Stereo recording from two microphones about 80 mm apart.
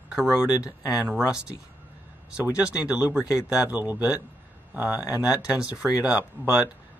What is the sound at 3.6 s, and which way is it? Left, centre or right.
Speech, right.